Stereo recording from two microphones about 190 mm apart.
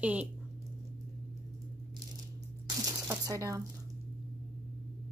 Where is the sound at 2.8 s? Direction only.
15° right (ahead or behind).